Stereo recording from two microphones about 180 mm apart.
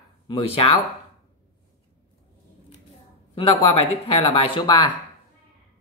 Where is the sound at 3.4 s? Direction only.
30° left (ahead or behind).